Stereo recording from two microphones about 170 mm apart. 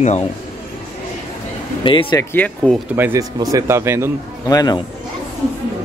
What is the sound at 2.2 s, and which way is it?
Speech, 10° left (ahead or behind).